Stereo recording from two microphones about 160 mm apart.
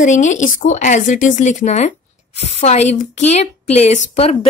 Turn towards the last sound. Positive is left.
turn(degrees=45)  # may be behind; listen again after turning